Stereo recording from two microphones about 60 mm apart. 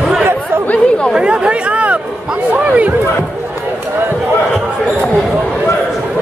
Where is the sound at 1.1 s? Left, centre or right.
Centre.